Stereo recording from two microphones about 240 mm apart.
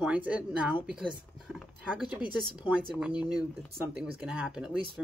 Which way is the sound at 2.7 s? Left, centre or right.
Centre.